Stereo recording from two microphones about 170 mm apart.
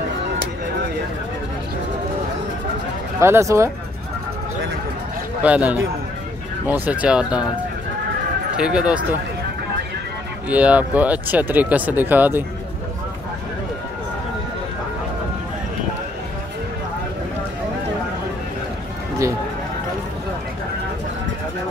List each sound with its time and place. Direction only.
3.2 s speech: 15° right (ahead or behind)
5.4 s speech: 10° right (ahead or behind)
8.5 s speech: 5° right (ahead or behind)
10.5 s speech: 10° right (ahead or behind)